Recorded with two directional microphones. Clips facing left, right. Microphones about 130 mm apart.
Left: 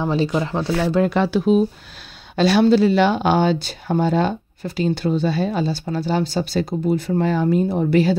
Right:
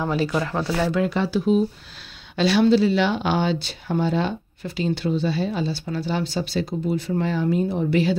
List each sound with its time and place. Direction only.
0.0 s speech: 25° left (ahead or behind)
1.0 s speech: 60° left (ahead or behind)
2.3 s speech: 45° left (ahead or behind)